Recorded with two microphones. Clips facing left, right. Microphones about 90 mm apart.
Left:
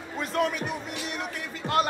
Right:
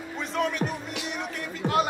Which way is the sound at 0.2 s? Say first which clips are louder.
Even; centre (ahead or behind).